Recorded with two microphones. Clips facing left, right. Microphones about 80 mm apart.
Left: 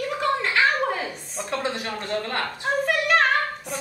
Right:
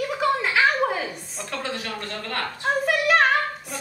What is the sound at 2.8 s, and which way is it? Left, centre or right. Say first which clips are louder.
Female singing: right 2 dB; centre.